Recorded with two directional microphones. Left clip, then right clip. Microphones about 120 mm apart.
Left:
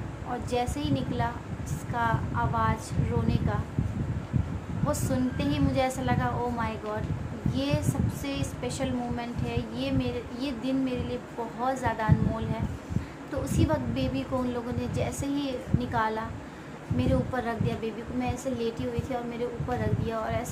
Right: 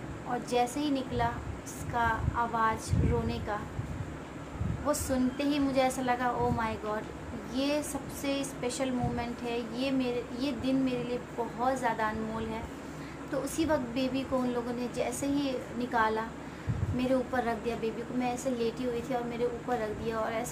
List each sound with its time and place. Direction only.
0.3 s a woman's voice: 5° left (ahead or behind)
4.8 s a woman's voice: centre (ahead or behind)
13.3 s a woman's voice: 5° left (ahead or behind)